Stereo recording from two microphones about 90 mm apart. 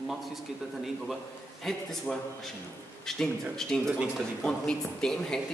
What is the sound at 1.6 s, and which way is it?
A man's voice, centre (ahead or behind).